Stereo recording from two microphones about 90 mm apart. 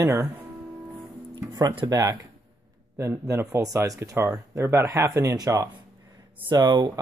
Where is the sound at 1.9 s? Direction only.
40° right (ahead or behind).